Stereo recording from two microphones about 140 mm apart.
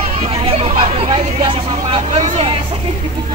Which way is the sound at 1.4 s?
40° right (ahead or behind).